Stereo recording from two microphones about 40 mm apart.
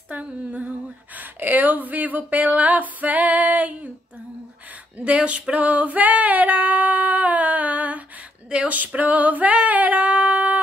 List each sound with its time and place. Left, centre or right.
0.1 s female singing: right
1.1 s speech: right
2.6 s female singing: right
4.9 s female singing: right
8.5 s speech: right
8.7 s female singing: right